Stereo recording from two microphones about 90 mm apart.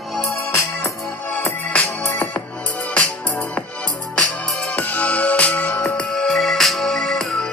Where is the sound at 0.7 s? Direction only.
15° left (ahead or behind).